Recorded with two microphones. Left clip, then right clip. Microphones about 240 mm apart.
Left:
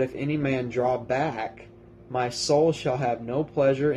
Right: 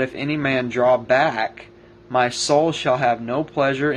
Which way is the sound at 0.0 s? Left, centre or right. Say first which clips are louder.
Right 4 dB; centre.